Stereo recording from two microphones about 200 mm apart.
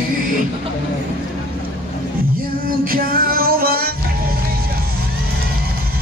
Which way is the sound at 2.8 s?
45° right (ahead or behind).